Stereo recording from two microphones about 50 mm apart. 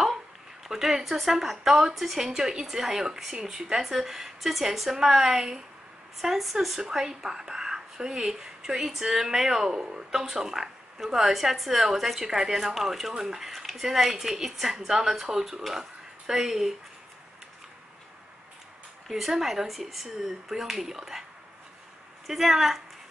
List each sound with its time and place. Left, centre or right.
0.7 s a woman's voice: centre
19.0 s speech: centre
22.2 s speech: centre